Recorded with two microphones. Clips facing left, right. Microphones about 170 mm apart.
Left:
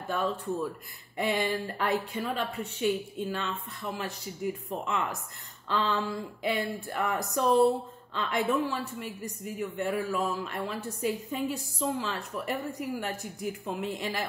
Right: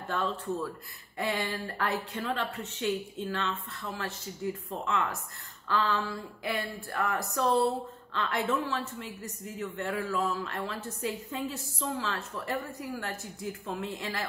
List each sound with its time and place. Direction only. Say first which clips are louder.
0.1 s speech: left 2 dB; 10° left (ahead or behind)